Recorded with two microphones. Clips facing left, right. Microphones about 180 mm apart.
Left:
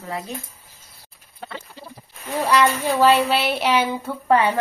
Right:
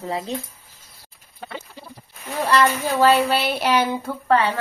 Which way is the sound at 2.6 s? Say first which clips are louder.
Even; centre (ahead or behind).